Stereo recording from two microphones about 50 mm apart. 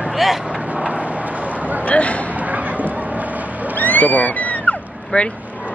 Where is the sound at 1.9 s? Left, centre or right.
Left.